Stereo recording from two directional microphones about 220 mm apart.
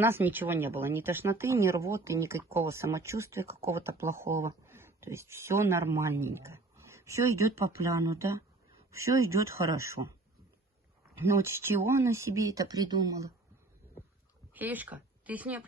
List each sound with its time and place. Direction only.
0.0 s speech: 10° right (ahead or behind)
11.1 s speech: 10° right (ahead or behind)
14.5 s speech: 10° right (ahead or behind)